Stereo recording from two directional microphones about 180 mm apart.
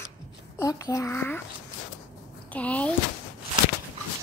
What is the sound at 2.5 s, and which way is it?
Speech, 5° left (ahead or behind).